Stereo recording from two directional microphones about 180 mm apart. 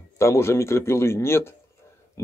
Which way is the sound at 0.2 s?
15° left (ahead or behind).